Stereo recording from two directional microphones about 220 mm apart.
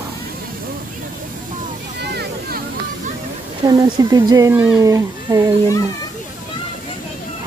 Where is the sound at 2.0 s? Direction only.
45° right (ahead or behind).